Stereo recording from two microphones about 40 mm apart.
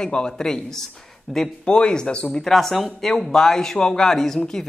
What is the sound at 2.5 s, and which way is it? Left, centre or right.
Speech, centre.